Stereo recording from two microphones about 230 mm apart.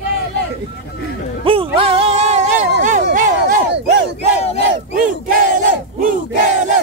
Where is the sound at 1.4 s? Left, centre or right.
Right.